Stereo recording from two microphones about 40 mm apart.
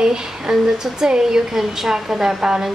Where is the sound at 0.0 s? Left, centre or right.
Centre.